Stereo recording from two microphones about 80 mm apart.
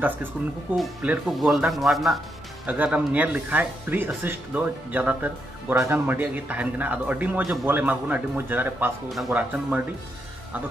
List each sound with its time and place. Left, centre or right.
0.7 s speech: right
1.3 s a man's voice: centre
2.6 s speech: centre